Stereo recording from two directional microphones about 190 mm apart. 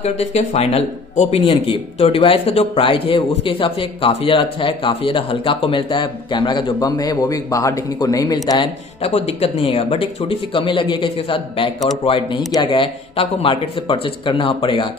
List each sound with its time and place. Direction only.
0.0 s speech: 35° left (ahead or behind)
9.0 s speech: 30° left (ahead or behind)